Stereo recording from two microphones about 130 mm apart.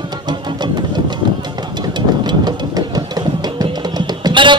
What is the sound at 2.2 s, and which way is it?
Music, 35° right (ahead or behind).